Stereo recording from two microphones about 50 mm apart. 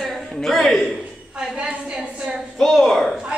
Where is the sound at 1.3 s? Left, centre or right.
Centre.